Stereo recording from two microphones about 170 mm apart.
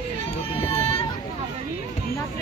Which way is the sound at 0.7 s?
35° left (ahead or behind).